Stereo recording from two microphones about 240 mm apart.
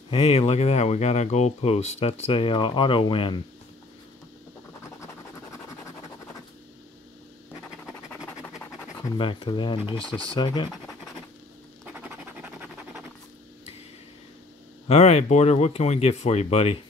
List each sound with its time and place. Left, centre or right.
0.1 s speech: left
7.8 s scratch: centre
9.1 s speech: left
11.8 s scratch: centre
14.9 s speech: left